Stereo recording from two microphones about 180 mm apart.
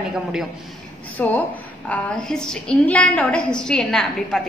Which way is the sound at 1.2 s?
10° left (ahead or behind).